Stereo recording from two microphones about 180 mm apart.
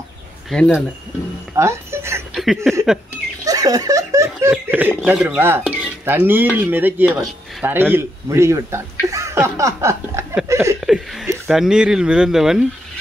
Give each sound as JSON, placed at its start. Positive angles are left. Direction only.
{"t": 0.5, "sound": "speech", "side_deg": 0}
{"t": 1.5, "sound": "speech", "side_deg": -15}
{"t": 2.3, "sound": "a sound", "side_deg": 0}
{"t": 3.4, "sound": "speech", "side_deg": -20}
{"t": 10.8, "sound": "speech", "side_deg": 0}